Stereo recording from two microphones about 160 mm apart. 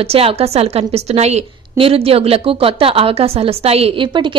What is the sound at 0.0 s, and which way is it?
A woman's voice, 35° right (ahead or behind).